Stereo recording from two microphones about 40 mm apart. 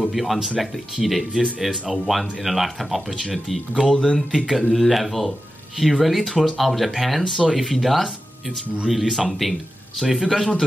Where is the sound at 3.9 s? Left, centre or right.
Left.